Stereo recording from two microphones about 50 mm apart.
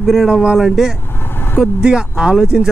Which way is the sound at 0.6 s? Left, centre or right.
Centre.